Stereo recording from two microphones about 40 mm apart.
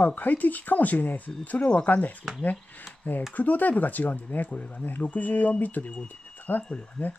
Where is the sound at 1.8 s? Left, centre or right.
Left.